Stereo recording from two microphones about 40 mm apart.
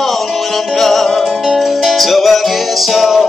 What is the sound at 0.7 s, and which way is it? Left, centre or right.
Music, centre.